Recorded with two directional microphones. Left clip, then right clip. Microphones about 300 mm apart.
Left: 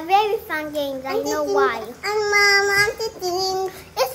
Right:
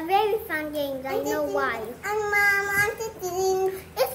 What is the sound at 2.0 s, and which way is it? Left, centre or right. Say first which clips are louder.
Child singing: left 5 dB; left.